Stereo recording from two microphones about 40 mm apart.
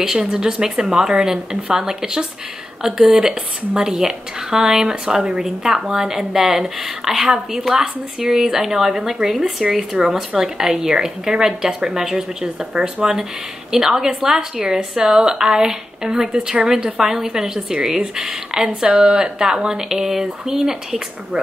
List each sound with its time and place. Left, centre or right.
0.0 s speech: centre